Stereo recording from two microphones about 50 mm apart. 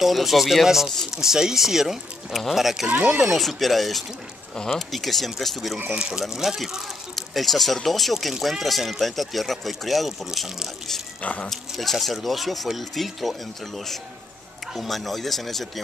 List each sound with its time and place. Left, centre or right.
0.0 s speech: centre
2.9 s speech: right
3.3 s speech: centre
5.9 s speech: centre
11.8 s speech: centre